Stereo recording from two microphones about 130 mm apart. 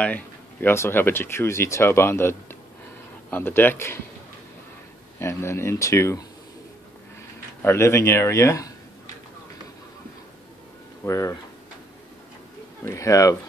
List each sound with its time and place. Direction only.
0.0 s speech: 15° left (ahead or behind)
5.2 s speech: 20° left (ahead or behind)
7.6 s speech: 20° left (ahead or behind)
11.1 s speech: 25° left (ahead or behind)
12.8 s speech: 25° left (ahead or behind)